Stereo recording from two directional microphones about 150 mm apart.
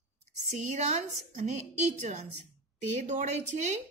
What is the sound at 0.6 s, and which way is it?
Speech, 50° right (ahead or behind).